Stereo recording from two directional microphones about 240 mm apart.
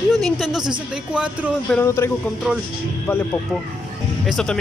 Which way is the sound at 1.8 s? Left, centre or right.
Centre.